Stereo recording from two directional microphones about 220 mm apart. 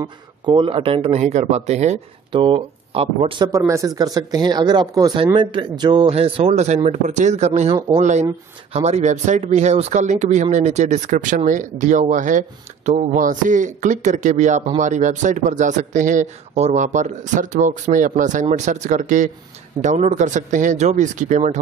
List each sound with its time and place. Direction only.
0.0 s speech: 20° right (ahead or behind)